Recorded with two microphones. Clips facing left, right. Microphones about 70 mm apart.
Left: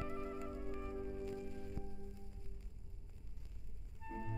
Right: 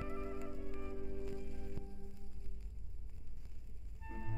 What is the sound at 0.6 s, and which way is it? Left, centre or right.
Music, centre.